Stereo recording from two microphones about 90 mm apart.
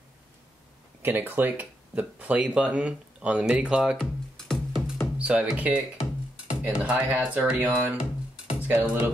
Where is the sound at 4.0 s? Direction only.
5° left (ahead or behind).